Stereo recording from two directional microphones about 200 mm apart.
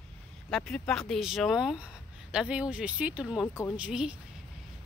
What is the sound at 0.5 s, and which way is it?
Speech, centre (ahead or behind).